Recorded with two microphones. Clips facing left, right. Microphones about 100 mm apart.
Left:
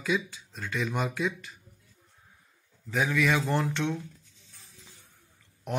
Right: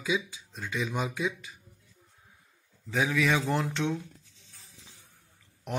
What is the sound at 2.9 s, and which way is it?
Speech, 15° right (ahead or behind).